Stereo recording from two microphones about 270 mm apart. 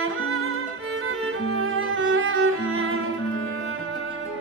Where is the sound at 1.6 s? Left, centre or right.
Right.